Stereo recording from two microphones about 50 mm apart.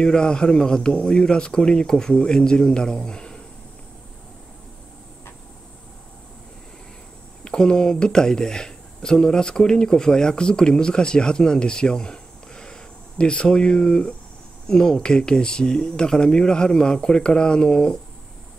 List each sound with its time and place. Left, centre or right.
0.0 s speech: centre
7.4 s speech: centre